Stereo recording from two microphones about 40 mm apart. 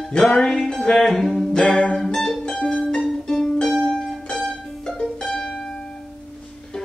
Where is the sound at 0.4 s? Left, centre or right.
Centre.